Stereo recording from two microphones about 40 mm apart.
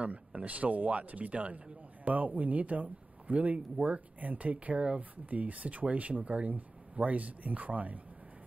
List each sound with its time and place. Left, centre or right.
0.0 s speech: right